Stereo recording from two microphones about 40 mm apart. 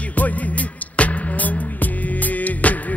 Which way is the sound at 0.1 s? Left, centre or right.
Left.